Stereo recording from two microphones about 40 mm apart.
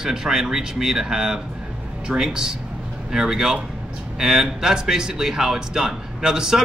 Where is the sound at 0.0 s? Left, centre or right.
Centre.